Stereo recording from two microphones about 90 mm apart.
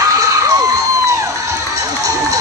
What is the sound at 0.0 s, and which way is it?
Crowd, 40° right (ahead or behind).